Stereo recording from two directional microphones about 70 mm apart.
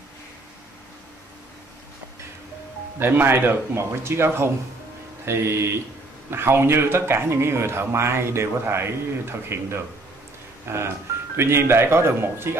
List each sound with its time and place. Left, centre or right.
3.0 s speech: right